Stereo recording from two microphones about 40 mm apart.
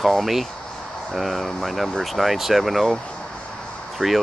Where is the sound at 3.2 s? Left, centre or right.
Centre.